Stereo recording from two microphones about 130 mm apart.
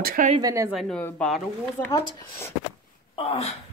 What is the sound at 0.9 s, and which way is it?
Speech, 10° left (ahead or behind).